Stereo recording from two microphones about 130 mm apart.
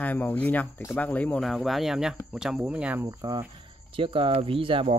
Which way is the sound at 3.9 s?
40° right (ahead or behind).